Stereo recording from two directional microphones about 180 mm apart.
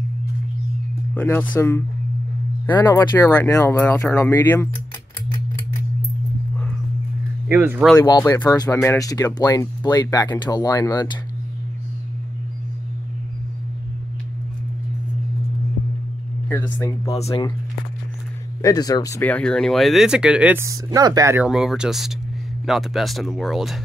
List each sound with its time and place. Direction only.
1.1 s speech: 10° left (ahead or behind)
2.8 s speech: 15° left (ahead or behind)
7.4 s speech: 10° right (ahead or behind)
7.8 s speech: 10° left (ahead or behind)
8.1 s speech: 20° left (ahead or behind)
16.4 s speech: 10° left (ahead or behind)
18.6 s speech: 20° left (ahead or behind); by 21.5 s 15° right (ahead or behind)
21.5 s speech: 5° right (ahead or behind)